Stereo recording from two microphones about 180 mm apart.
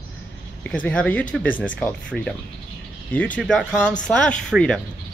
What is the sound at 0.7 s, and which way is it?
Speech, 5° left (ahead or behind).